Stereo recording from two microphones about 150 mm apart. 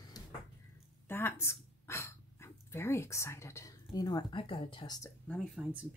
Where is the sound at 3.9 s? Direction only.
25° left (ahead or behind).